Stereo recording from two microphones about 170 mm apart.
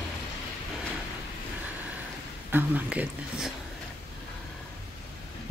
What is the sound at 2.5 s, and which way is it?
Speech, 10° right (ahead or behind).